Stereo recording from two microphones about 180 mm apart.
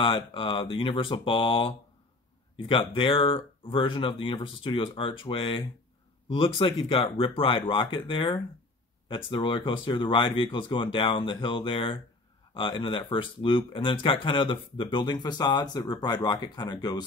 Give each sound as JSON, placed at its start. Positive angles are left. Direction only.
{"t": 0.0, "sound": "speech", "side_deg": 30}